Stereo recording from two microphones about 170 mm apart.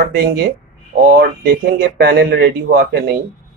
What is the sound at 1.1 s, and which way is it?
Speech, 65° right (ahead or behind).